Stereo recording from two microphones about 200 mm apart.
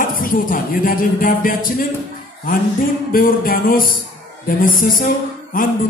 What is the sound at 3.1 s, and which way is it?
A woman's voice, 45° left (ahead or behind).